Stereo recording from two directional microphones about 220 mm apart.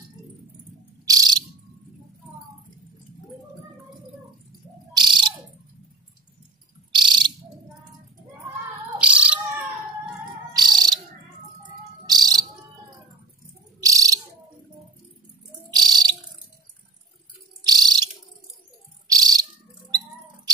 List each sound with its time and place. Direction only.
1.0 s cricket: 15° right (ahead or behind)
4.9 s bird: 20° right (ahead or behind)
6.9 s cricket: 20° right (ahead or behind)
8.9 s a sound: 5° right (ahead or behind)
10.5 s cricket: 20° right (ahead or behind)
12.1 s bird: 20° right (ahead or behind)
13.7 s bird: 15° right (ahead or behind)
15.7 s bird: 20° right (ahead or behind)
17.6 s bird: 20° right (ahead or behind)